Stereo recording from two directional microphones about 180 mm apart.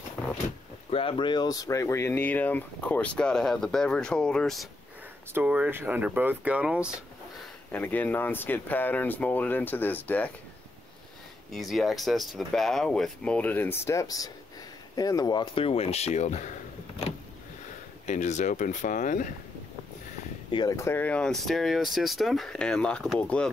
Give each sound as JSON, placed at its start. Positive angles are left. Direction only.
{"t": 0.8, "sound": "speech", "side_deg": 30}
{"t": 5.3, "sound": "speech", "side_deg": -10}
{"t": 7.7, "sound": "speech", "side_deg": 10}
{"t": 11.5, "sound": "speech", "side_deg": 0}
{"t": 18.0, "sound": "speech", "side_deg": 40}
{"t": 20.5, "sound": "speech", "side_deg": 20}